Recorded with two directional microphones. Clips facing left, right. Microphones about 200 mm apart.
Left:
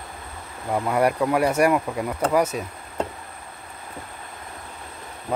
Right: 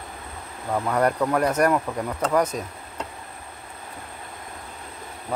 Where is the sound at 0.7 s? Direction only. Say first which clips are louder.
Left 1 dB; 10° left (ahead or behind).